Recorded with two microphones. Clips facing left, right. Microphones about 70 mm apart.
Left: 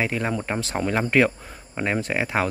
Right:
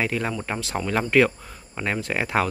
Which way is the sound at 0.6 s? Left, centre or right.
Left.